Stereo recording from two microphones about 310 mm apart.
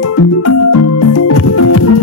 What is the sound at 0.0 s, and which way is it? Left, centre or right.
Music, left.